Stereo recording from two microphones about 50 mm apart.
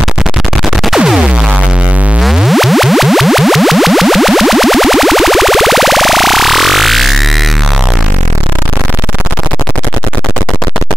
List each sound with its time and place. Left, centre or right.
0.8 s music: centre
2.2 s music: centre